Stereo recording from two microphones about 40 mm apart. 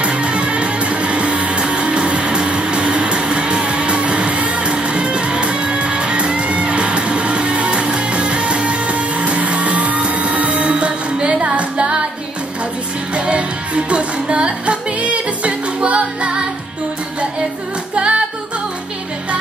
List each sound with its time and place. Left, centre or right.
0.0 s music: right
13.1 s music: right
17.9 s music: right